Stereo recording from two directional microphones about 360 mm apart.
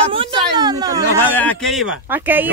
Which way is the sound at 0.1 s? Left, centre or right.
Centre.